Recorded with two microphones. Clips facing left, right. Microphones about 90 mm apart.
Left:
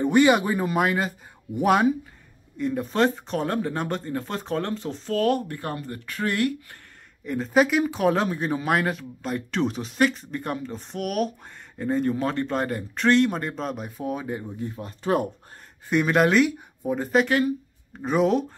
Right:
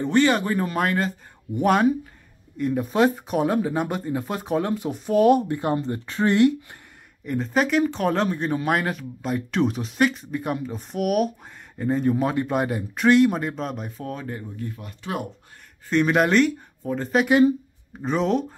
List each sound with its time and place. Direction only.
0.0 s speech: 10° left (ahead or behind); by 6.8 s 25° right (ahead or behind)
7.2 s speech: centre (ahead or behind)
14.8 s speech: 35° left (ahead or behind)
15.9 s speech: 5° left (ahead or behind)
17.3 s speech: 20° right (ahead or behind)
18.0 s speech: 5° left (ahead or behind)